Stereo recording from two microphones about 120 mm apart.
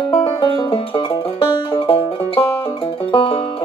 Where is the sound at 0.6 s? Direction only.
45° left (ahead or behind).